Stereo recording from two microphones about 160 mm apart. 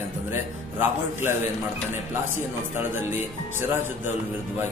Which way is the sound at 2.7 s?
10° right (ahead or behind).